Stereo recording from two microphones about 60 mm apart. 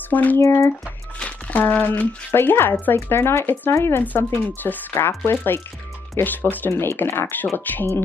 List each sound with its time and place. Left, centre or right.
0.1 s speech: left
0.4 s speech: left
1.2 s speech: left
4.0 s speech: left
4.9 s speech: left
6.4 s speech: left
6.8 s speech: left